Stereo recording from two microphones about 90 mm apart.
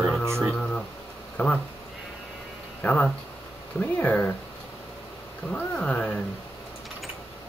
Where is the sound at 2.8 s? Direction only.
15° left (ahead or behind).